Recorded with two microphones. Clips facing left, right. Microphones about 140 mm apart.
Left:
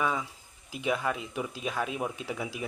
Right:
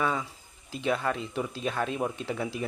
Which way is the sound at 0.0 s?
5° left (ahead or behind).